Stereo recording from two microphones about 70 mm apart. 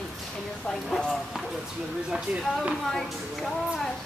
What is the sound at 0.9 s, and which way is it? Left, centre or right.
Speech, centre.